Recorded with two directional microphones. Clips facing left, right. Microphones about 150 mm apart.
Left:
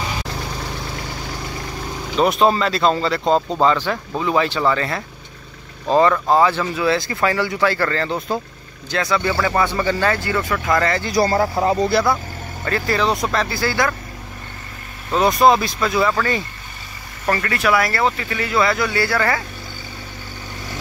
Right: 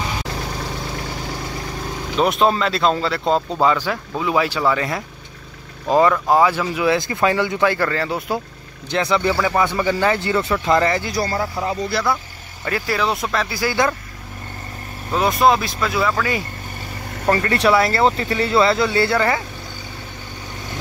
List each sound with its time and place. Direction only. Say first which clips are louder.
2.1 s speech: left 1 dB; centre (ahead or behind)
8.9 s speech: right 1 dB; 20° right (ahead or behind)
11.3 s speech: left 5 dB; 45° left (ahead or behind)
12.6 s speech: left 2 dB; 10° right (ahead or behind)
13.6 s speech: right 3 dB; 15° right (ahead or behind)
15.1 s speech: left 2 dB; centre (ahead or behind)
17.3 s speech: right 2 dB; 30° right (ahead or behind)